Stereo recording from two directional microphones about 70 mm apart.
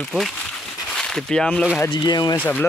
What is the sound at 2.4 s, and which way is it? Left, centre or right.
Speech, left.